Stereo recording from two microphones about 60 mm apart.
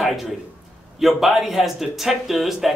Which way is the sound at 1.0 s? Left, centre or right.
Centre.